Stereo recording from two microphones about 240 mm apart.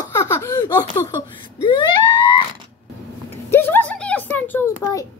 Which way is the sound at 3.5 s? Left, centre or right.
Centre.